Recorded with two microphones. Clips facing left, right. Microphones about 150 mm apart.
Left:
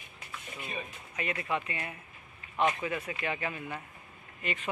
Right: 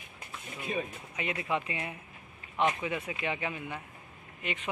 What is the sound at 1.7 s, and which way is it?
Speech, 25° right (ahead or behind).